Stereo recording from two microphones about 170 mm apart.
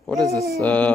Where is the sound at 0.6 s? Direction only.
10° left (ahead or behind).